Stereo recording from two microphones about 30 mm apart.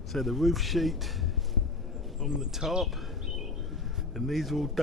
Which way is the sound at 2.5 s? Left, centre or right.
Centre.